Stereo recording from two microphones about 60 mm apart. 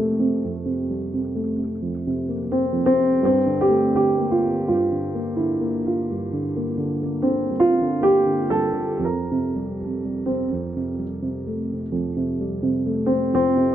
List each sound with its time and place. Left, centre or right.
2.8 s music: right
7.2 s music: right
8.5 s music: right
13.0 s music: right